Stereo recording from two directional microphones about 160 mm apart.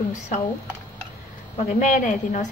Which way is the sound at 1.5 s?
50° left (ahead or behind).